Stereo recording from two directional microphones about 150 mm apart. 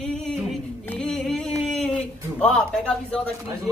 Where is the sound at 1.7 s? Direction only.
5° left (ahead or behind).